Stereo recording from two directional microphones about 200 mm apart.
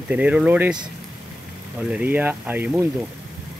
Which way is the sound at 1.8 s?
5° right (ahead or behind).